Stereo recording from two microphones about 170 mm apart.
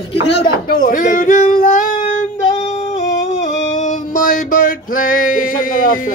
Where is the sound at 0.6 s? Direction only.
55° left (ahead or behind).